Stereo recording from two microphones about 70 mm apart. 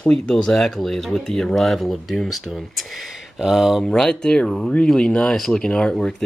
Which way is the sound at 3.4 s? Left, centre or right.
Centre.